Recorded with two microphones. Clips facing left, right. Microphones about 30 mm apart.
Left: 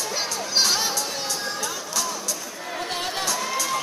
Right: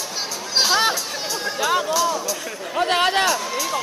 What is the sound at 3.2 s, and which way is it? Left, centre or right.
Music, centre.